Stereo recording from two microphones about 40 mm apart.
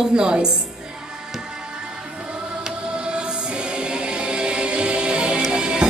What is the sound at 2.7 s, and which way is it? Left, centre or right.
Music, right.